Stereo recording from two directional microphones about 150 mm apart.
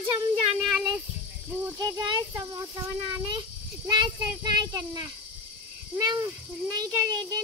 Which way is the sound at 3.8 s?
30° right (ahead or behind).